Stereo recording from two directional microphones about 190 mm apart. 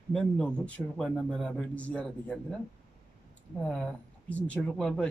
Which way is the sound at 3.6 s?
5° left (ahead or behind).